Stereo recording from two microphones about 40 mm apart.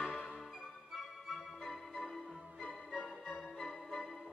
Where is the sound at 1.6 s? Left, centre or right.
Centre.